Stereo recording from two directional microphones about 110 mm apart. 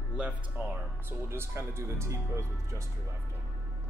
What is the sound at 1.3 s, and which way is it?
Speech, 25° right (ahead or behind).